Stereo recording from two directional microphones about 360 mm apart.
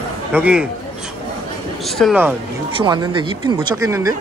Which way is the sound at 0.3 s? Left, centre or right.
Centre.